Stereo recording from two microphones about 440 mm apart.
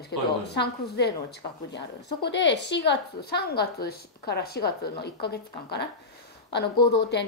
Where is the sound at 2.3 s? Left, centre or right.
Left.